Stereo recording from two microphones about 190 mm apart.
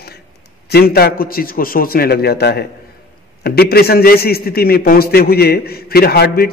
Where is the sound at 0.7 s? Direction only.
55° left (ahead or behind).